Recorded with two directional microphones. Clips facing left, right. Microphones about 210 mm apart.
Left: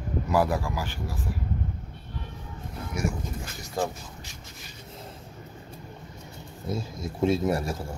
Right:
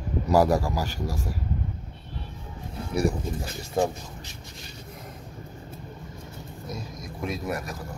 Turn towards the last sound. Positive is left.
turn(degrees=30)  # may be behind; listen again after turning